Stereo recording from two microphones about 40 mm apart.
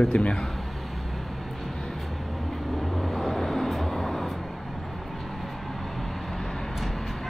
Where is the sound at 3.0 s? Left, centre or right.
Centre.